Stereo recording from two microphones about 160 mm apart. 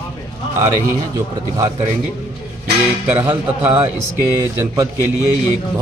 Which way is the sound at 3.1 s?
10° right (ahead or behind).